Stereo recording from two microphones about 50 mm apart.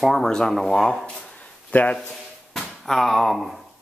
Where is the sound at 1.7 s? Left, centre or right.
Left.